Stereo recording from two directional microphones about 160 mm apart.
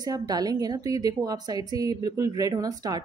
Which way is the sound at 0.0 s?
25° right (ahead or behind).